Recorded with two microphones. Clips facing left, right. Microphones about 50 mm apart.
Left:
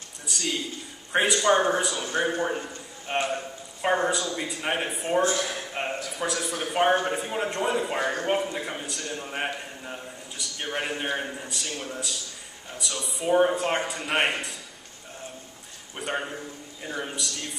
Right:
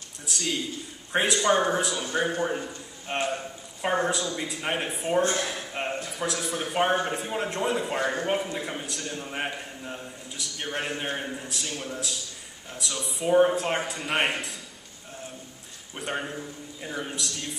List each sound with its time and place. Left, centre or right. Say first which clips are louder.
0.3 s a man's voice: even; centre
2.0 s a man's voice: left 1 dB; centre
3.1 s a man's voice: left 1 dB; centre
16.0 s a man's voice: left 1 dB; centre